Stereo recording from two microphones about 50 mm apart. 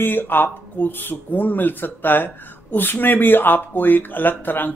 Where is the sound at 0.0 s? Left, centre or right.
Left.